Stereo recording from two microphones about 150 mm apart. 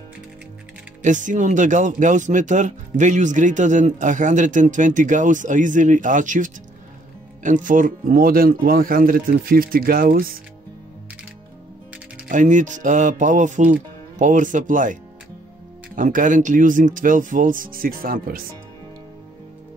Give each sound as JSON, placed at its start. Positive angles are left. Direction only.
{"t": 1.0, "sound": "speech", "side_deg": -55}
{"t": 12.3, "sound": "speech", "side_deg": -55}
{"t": 16.0, "sound": "speech", "side_deg": -60}